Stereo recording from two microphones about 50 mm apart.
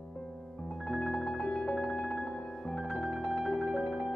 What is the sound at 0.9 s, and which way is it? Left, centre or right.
Music, centre.